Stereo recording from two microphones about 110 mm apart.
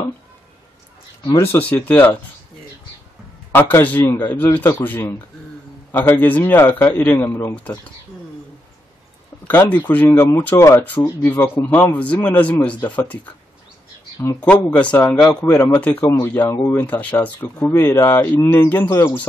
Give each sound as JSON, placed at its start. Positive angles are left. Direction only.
{"t": 1.4, "sound": "speech", "side_deg": 15}
{"t": 3.5, "sound": "a man's voice", "side_deg": 20}
{"t": 9.5, "sound": "speech", "side_deg": 15}
{"t": 16.2, "sound": "a man's voice", "side_deg": 25}